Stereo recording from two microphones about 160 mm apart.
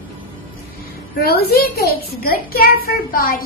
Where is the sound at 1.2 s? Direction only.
75° left (ahead or behind).